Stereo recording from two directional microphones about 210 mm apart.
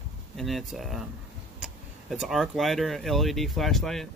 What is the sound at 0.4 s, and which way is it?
Speech, centre (ahead or behind).